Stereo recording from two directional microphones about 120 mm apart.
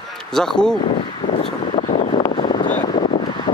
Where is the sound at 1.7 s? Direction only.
55° left (ahead or behind).